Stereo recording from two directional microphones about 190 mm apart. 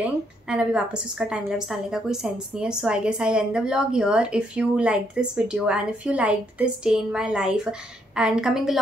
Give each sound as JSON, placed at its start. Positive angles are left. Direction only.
{"t": 0.0, "sound": "a woman's voice", "side_deg": -5}